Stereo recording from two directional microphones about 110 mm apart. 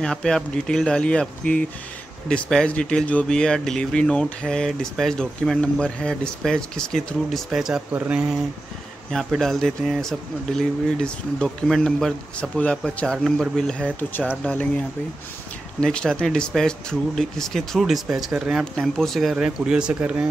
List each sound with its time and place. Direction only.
0.0 s speech: 5° left (ahead or behind); by 8.4 s 10° right (ahead or behind)
9.4 s speech: 5° left (ahead or behind)
13.9 s speech: 15° left (ahead or behind)
15.8 s speech: 10° left (ahead or behind); by 20.2 s 10° right (ahead or behind)